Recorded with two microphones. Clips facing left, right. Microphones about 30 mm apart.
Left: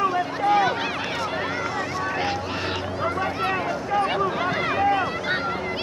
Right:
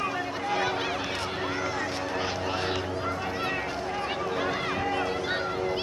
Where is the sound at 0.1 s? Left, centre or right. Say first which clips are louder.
Left 8 dB; left.